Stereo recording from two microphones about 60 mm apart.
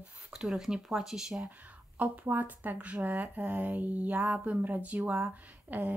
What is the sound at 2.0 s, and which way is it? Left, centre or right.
Speech, right.